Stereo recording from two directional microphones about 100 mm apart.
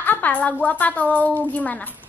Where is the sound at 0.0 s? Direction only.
20° left (ahead or behind).